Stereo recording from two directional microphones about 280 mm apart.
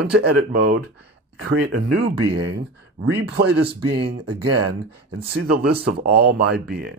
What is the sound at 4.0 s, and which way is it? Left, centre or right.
Speech, right.